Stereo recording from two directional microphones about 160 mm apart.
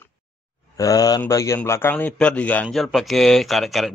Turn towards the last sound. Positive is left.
turn(degrees=0)  # may be behind; listen again after turning